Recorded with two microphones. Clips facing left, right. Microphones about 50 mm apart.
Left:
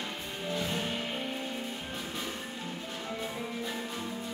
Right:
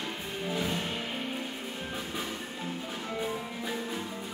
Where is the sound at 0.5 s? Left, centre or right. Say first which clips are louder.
Right 2 dB; centre.